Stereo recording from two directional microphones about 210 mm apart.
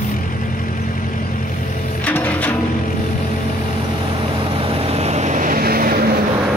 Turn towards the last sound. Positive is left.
turn(degrees=-45)  # may be behind; listen again after turning